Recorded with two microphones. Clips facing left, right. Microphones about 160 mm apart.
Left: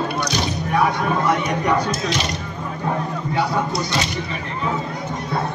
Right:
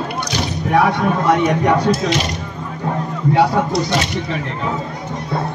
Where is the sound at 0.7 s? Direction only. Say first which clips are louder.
Right 5 dB; 80° right.